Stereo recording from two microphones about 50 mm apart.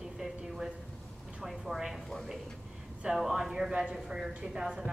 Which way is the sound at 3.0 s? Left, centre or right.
Centre.